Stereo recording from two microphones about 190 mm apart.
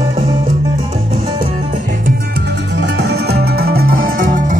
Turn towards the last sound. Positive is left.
turn(degrees=-50)  # may be behind; listen again after turning